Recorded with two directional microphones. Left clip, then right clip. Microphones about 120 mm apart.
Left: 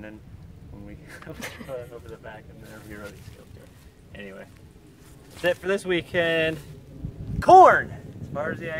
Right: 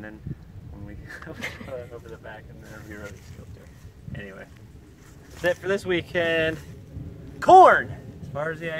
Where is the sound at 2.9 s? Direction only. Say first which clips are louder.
Even; 35° left (ahead or behind).